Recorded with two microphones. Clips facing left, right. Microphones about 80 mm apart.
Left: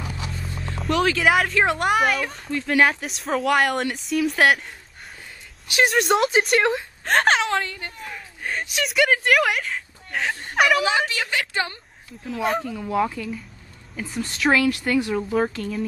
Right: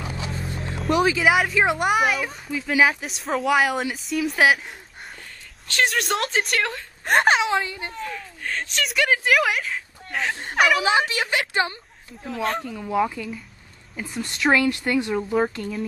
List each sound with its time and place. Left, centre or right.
0.9 s a woman's voice: centre
5.9 s a woman's voice: centre
7.1 s a woman's voice: centre
8.0 s a woman's voice: centre
10.8 s a woman's voice: centre
12.3 s a woman's voice: centre